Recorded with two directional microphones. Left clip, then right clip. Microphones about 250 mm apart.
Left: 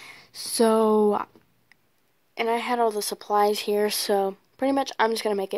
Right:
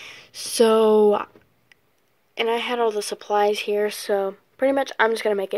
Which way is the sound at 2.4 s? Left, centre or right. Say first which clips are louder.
Right 2 dB; left.